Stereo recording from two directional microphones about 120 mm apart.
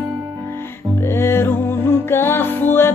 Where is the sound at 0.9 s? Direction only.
20° left (ahead or behind).